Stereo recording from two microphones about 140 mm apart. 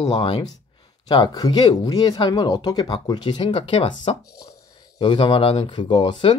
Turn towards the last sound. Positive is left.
turn(degrees=35)  # may be behind; listen again after turning